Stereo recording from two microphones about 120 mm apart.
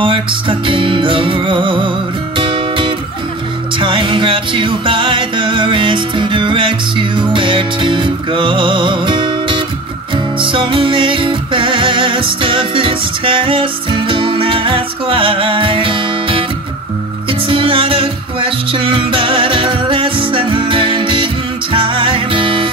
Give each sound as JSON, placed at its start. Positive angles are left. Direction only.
{"t": 0.0, "sound": "music", "side_deg": -45}